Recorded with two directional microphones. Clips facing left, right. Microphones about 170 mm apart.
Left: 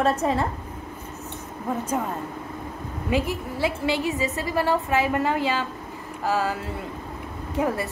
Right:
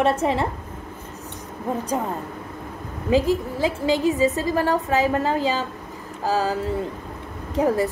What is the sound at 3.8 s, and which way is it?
A woman's voice, 40° right (ahead or behind).